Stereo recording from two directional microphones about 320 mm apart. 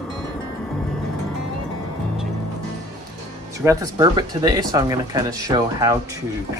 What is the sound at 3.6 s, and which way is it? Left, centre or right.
Speech, centre.